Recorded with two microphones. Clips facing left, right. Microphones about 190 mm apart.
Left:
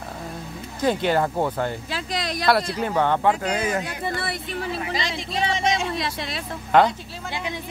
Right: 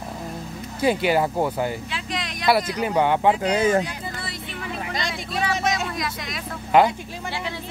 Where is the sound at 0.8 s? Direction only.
10° right (ahead or behind).